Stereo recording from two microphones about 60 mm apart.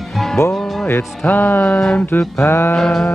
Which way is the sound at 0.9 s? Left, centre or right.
Left.